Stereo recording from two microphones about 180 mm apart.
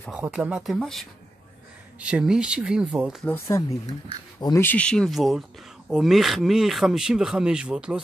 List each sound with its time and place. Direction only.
0.1 s speech: 5° right (ahead or behind)
3.3 s speech: 15° left (ahead or behind)
4.6 s speech: 5° left (ahead or behind)